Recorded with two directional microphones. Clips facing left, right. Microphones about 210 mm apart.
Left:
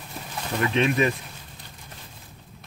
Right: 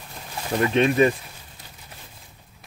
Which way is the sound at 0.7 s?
35° right (ahead or behind).